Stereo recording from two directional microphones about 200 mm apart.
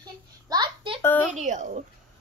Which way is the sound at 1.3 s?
35° right (ahead or behind).